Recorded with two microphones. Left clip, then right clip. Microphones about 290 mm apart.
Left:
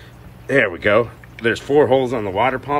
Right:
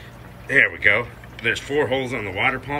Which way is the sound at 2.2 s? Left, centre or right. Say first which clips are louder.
Left 4 dB; left.